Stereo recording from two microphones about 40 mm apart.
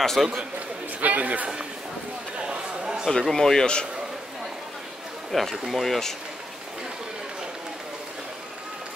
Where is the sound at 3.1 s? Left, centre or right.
Centre.